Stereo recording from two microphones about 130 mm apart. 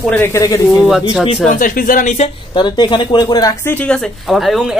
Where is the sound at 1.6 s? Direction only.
90° left.